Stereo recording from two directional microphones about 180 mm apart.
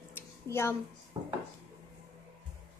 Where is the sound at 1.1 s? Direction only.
30° right (ahead or behind).